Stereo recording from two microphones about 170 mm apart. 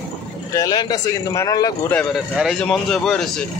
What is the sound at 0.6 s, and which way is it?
A man's voice, 25° left (ahead or behind).